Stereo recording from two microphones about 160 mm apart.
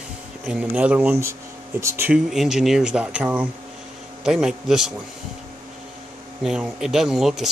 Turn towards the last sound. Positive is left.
turn(degrees=0)  # may be behind; listen again after turning